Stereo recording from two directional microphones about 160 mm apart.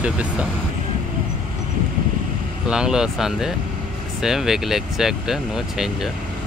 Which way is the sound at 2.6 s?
5° right (ahead or behind).